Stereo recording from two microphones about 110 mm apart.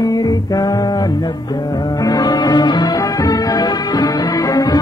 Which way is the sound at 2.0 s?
35° left (ahead or behind).